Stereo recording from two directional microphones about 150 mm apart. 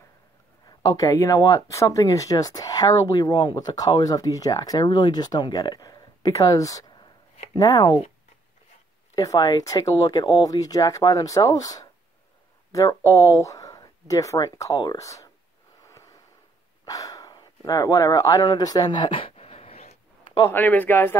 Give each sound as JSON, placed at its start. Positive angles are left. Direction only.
{"t": 0.7, "sound": "speech", "side_deg": 25}
{"t": 9.1, "sound": "speech", "side_deg": 25}
{"t": 15.9, "sound": "a sound", "side_deg": 20}
{"t": 20.5, "sound": "speech", "side_deg": 10}